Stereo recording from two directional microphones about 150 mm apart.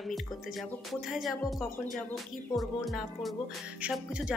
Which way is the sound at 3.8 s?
5° right (ahead or behind).